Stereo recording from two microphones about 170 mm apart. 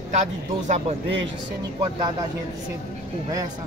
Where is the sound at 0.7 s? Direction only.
40° right (ahead or behind).